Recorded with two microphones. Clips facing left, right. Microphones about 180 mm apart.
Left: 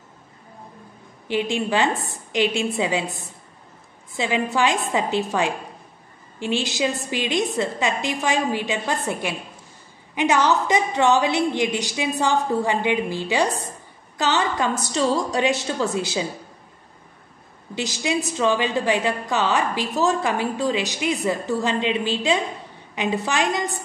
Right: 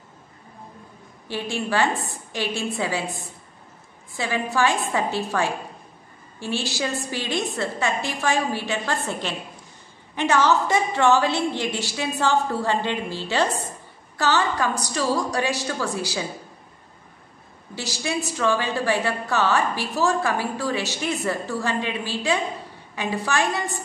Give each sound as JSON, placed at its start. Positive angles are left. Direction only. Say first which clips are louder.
{"t": 1.2, "sound": "a woman's voice", "louder": "left 5 dB", "side_deg": 20}
{"t": 17.7, "sound": "a woman's voice", "louder": "left 3 dB", "side_deg": 20}